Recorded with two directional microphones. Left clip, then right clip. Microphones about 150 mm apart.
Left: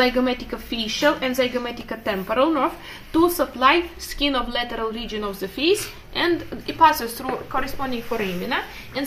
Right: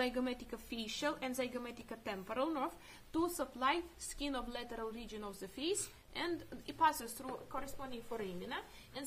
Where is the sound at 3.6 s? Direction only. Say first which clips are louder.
Left 18 dB; 35° right (ahead or behind).